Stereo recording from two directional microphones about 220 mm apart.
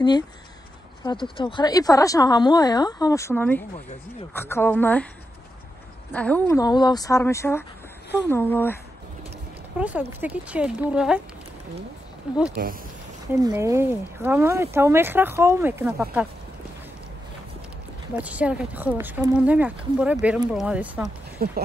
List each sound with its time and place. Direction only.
1.0 s speech: 20° left (ahead or behind)
6.1 s speech: 5° left (ahead or behind)
9.8 s speech: 5° right (ahead or behind)
12.3 s speech: 5° right (ahead or behind)
13.3 s speech: 15° right (ahead or behind)
18.1 s speech: 5° right (ahead or behind)
21.4 s speech: 45° right (ahead or behind)